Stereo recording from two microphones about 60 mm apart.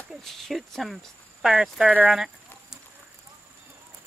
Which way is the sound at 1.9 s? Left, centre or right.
Right.